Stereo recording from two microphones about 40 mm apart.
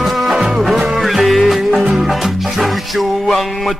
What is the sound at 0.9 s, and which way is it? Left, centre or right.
Music, centre.